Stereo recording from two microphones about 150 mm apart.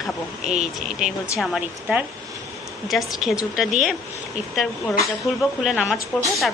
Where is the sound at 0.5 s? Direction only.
50° right (ahead or behind).